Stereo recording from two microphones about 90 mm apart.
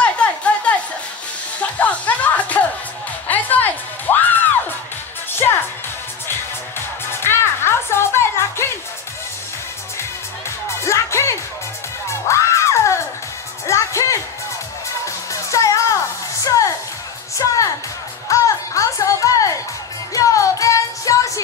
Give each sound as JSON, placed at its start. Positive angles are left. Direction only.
{"t": 0.0, "sound": "chatter", "side_deg": 15}
{"t": 1.6, "sound": "music", "side_deg": 15}
{"t": 7.1, "sound": "music", "side_deg": 25}
{"t": 10.8, "sound": "music", "side_deg": 30}